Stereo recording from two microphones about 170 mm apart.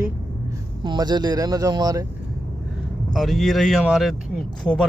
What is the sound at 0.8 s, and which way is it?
Speech, 25° right (ahead or behind).